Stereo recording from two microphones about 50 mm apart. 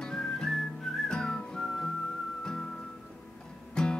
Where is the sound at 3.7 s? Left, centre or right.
Centre.